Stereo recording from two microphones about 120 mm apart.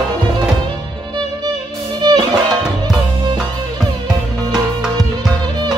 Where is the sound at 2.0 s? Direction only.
35° right (ahead or behind).